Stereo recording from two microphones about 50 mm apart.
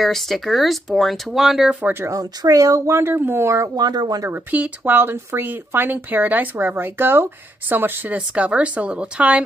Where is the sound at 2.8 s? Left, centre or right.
Right.